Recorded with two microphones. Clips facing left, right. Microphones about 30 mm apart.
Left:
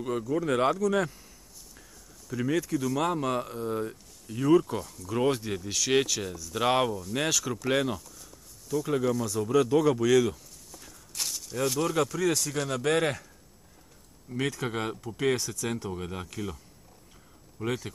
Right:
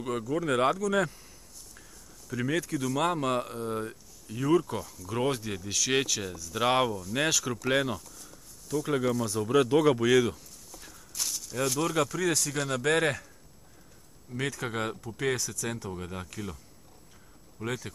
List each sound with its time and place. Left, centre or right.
0.3 s speech: centre
1.8 s a sound: centre
2.6 s speech: centre
9.5 s speech: right
10.3 s a sound: centre
11.9 s speech: centre
14.3 s speech: centre
17.6 s speech: centre